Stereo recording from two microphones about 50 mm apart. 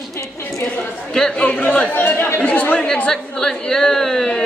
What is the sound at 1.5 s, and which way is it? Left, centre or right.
Speech, left.